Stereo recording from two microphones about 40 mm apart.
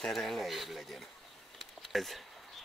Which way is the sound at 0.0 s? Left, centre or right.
Centre.